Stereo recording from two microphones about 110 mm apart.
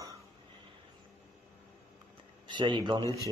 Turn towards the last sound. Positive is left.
turn(degrees=-45)  # may be behind; listen again after turning